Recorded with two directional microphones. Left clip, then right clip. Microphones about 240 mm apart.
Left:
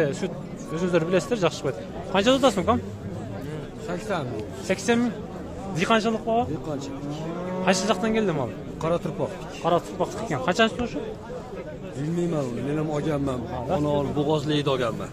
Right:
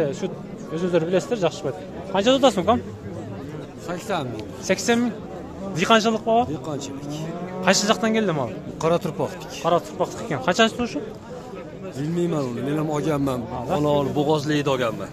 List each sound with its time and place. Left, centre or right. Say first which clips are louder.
0.7 s a man's voice: right 2 dB; centre
3.9 s a man's voice: right 2 dB; right
4.6 s a man's voice: right 3 dB; centre
7.6 s a man's voice: right 4 dB; centre
8.8 s a man's voice: right 4 dB; right
9.6 s a man's voice: right 2 dB; centre
12.2 s a man's voice: right 3 dB; right